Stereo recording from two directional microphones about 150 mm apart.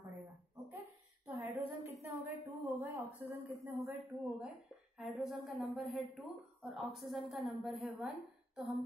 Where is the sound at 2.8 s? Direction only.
15° right (ahead or behind).